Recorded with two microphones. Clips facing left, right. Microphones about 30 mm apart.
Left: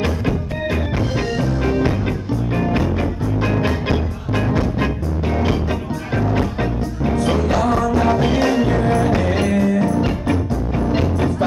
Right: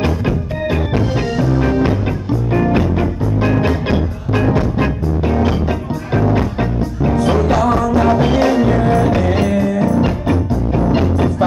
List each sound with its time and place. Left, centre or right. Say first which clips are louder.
0.0 s music: right 3 dB; centre